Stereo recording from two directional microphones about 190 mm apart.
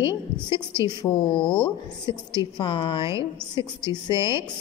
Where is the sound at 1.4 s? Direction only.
5° left (ahead or behind).